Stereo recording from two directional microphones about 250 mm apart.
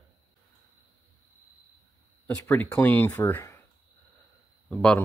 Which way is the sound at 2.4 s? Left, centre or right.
Centre.